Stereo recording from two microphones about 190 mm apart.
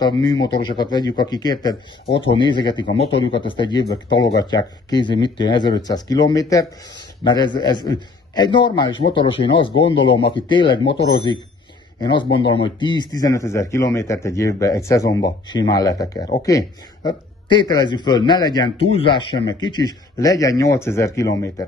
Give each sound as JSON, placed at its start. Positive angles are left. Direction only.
{"t": 0.0, "sound": "a man's voice", "side_deg": 20}
{"t": 10.8, "sound": "speech", "side_deg": 65}
{"t": 12.0, "sound": "a man's voice", "side_deg": 25}